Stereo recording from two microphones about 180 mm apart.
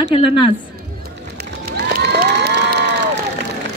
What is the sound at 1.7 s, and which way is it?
Crowd, 65° right (ahead or behind).